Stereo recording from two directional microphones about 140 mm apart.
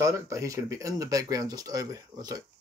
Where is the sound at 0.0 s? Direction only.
20° right (ahead or behind).